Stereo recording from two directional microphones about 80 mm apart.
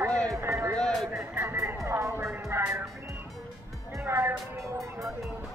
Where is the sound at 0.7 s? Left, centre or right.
Centre.